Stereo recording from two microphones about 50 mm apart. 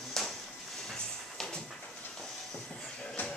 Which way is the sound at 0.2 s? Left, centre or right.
Centre.